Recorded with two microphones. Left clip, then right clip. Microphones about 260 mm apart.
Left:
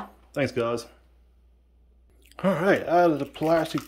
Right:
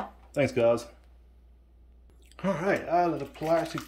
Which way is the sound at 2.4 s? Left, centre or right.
Left.